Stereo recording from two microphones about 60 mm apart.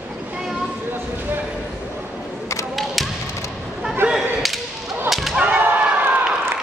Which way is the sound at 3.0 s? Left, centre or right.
Centre.